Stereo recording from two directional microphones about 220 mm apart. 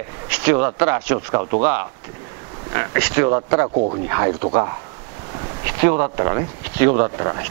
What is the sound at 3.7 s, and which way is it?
Speech, 35° right (ahead or behind).